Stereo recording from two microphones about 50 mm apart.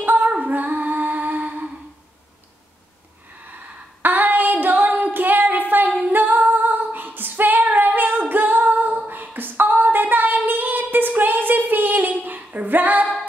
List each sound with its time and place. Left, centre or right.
0.0 s music: right
4.0 s female singing: right
5.1 s a sound: right
5.9 s female singing: right
6.1 s female singing: right